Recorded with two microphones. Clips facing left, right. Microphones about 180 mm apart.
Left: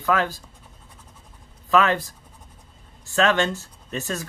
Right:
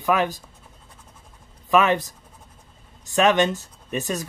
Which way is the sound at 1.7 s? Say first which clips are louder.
Right 1 dB; 20° right (ahead or behind).